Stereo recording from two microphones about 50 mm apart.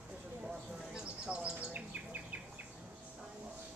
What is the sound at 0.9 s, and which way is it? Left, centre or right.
Bird, right.